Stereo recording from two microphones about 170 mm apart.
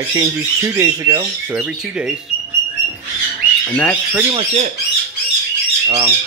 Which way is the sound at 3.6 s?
10° left (ahead or behind).